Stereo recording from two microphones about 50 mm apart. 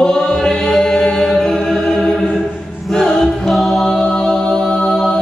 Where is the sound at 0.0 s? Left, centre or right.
Centre.